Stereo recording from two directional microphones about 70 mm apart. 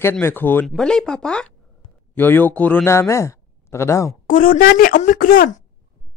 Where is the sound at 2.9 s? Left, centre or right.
Left.